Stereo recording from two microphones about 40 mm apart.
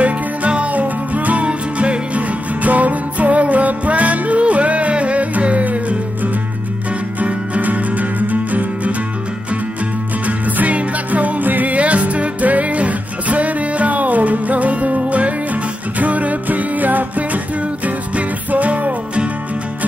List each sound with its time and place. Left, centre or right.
0.0 s music: right
10.2 s music: right